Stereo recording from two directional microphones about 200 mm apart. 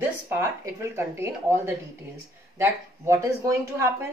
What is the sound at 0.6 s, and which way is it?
Speech, 15° right (ahead or behind).